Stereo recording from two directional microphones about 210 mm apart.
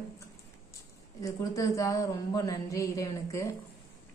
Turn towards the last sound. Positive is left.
turn(degrees=15)  # may be behind; listen again after turning